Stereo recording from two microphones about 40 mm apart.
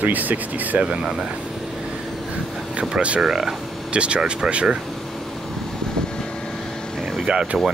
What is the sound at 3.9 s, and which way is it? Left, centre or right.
Speech, right.